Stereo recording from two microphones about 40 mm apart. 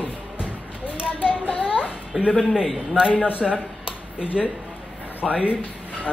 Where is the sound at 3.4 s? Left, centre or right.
Right.